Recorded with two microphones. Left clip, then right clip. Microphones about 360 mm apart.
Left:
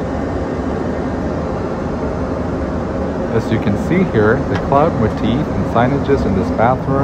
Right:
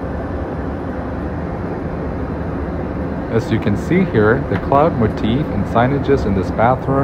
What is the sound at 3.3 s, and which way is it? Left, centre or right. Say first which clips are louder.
Speech: right 1 dB; centre.